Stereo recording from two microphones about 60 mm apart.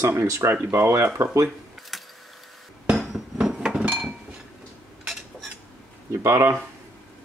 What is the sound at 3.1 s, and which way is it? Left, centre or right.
Hammer, centre.